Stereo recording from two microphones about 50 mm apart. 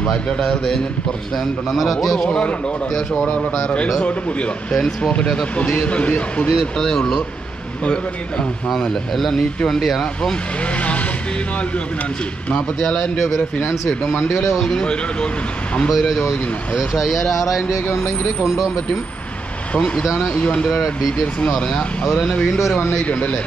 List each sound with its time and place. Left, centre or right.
0.0 s speech: left
0.4 s speech: centre
2.2 s speech: left
3.6 s speech: left
4.7 s speech: centre
6.5 s speech: centre
8.6 s speech: centre
10.6 s speech: left
12.8 s speech: centre
14.6 s speech: centre
15.9 s speech: centre
19.7 s speech: left
20.6 s speech: centre; by 23.4 s left